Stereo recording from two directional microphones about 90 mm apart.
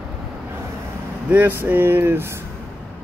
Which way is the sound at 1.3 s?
20° right (ahead or behind).